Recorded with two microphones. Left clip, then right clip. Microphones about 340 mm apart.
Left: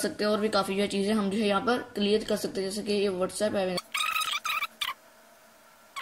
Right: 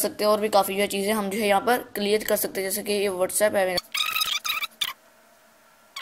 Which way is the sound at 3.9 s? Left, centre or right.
Centre.